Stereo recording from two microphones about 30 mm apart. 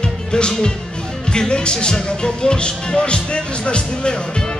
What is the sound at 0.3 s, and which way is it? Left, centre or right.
Speech, left.